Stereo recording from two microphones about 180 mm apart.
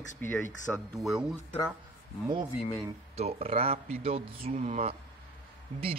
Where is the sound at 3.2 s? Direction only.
35° right (ahead or behind).